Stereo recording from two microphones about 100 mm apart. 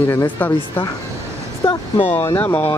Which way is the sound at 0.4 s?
20° left (ahead or behind).